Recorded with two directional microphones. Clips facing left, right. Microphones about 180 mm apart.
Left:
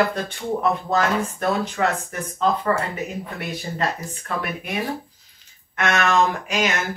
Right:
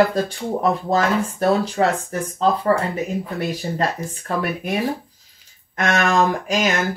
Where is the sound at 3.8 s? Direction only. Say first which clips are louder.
Right 3 dB; 40° right (ahead or behind).